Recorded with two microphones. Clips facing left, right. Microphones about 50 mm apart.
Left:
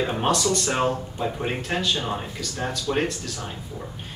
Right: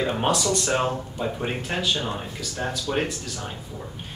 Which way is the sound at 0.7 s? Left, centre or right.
Centre.